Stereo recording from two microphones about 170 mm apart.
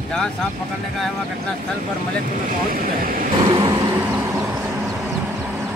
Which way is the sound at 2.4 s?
55° right (ahead or behind).